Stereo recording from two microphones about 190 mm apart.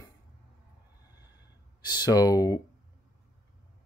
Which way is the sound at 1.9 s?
20° left (ahead or behind).